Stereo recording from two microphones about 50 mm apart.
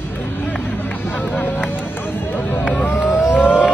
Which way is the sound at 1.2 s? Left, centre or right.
Left.